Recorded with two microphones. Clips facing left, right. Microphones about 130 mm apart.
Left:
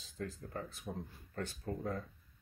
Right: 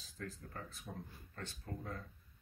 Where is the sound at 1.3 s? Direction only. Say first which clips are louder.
Left 7 dB; 40° left (ahead or behind).